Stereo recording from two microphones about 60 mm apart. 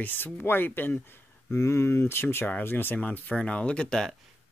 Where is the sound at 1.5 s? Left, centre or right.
Left; by 4.0 s centre.